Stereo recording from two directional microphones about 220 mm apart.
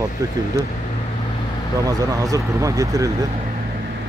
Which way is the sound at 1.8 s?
15° right (ahead or behind).